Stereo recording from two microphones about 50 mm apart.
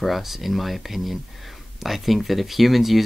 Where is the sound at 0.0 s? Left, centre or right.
Centre.